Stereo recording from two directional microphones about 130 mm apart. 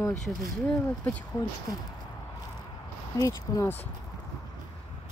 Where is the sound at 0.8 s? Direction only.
15° left (ahead or behind).